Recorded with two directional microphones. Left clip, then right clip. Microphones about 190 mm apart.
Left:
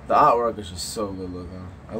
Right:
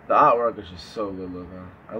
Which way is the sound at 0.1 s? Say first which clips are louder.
Even; 15° left (ahead or behind).